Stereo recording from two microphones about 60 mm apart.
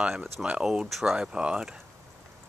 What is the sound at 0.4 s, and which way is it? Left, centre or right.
Speech, centre.